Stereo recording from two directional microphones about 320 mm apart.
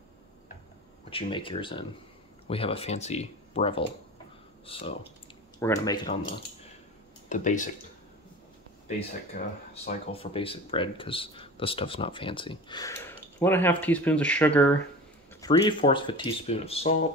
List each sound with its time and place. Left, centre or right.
1.1 s speech: centre
7.2 s speech: left
9.8 s speech: centre